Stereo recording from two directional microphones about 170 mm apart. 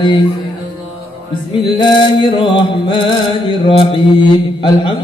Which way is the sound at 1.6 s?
30° left (ahead or behind).